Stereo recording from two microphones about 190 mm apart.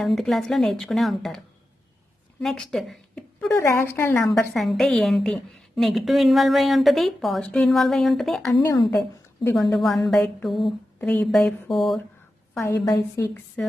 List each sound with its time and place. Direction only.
0.0 s a woman's voice: centre (ahead or behind)
2.4 s a woman's voice: centre (ahead or behind)
4.6 s a woman's voice: centre (ahead or behind)
8.9 s a woman's voice: 15° left (ahead or behind)
9.8 s a woman's voice: centre (ahead or behind)
13.1 s a woman's voice: 5° left (ahead or behind)